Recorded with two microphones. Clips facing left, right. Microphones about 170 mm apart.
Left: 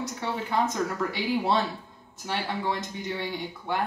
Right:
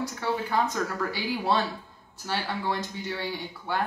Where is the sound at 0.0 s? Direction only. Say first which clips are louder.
Right 2 dB; 20° left (ahead or behind).